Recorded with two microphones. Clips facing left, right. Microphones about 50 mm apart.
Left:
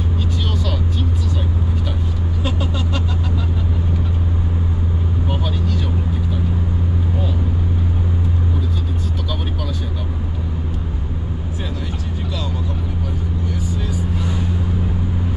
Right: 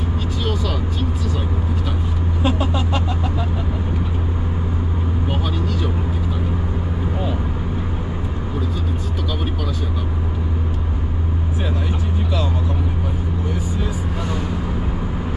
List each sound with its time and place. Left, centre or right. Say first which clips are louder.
2.4 s vehicle: right 4 dB; centre